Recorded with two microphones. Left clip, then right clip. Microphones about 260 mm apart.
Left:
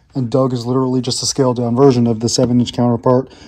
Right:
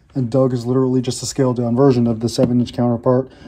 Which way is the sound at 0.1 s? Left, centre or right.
Left.